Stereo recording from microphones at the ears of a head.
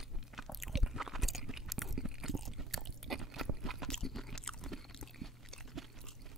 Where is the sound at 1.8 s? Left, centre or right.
Right.